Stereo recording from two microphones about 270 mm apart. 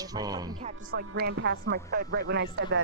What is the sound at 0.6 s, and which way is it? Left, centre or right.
A woman's voice, right.